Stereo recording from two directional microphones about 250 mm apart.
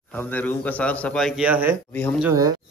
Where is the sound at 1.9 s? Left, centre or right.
Centre.